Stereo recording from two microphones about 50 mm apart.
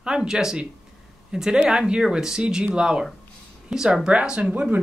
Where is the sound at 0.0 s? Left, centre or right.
Centre.